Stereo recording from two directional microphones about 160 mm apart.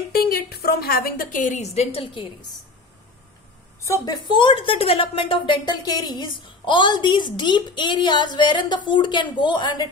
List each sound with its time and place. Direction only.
0.1 s a woman's voice: 70° left (ahead or behind); by 2.2 s 35° left (ahead or behind)
3.8 s a woman's voice: 20° left (ahead or behind)